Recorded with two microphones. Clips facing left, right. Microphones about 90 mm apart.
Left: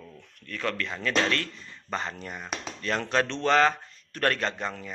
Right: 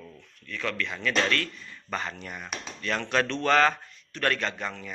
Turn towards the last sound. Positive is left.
turn(degrees=30)  # may be behind; listen again after turning